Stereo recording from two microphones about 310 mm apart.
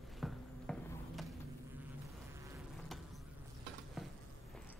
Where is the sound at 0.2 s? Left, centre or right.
Centre.